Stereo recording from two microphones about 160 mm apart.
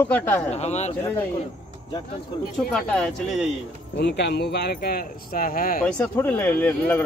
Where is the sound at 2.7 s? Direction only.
5° left (ahead or behind).